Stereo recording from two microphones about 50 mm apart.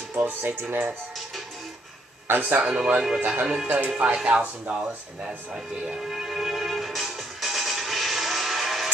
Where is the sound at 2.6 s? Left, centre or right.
Centre.